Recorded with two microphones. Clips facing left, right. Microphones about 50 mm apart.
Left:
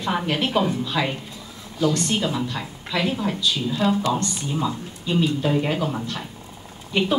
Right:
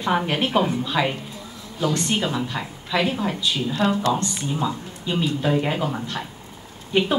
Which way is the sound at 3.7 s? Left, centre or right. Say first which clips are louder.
Right 1 dB; right.